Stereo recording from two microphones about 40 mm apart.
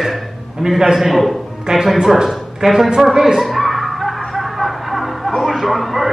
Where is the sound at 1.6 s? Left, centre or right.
Centre.